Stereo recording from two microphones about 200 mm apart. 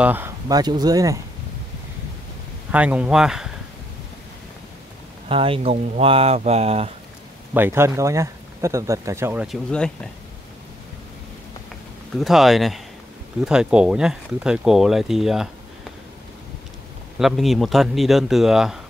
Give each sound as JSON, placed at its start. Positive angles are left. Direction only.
{"t": 0.0, "sound": "speech", "side_deg": -10}
{"t": 2.7, "sound": "speech", "side_deg": -5}
{"t": 5.3, "sound": "speech", "side_deg": -25}
{"t": 7.5, "sound": "speech", "side_deg": -10}
{"t": 9.7, "sound": "speech", "side_deg": 5}
{"t": 12.2, "sound": "speech", "side_deg": 0}
{"t": 17.2, "sound": "speech", "side_deg": 0}